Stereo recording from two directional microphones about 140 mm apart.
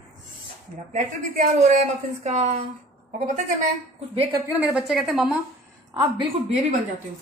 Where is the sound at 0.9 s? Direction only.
60° right (ahead or behind).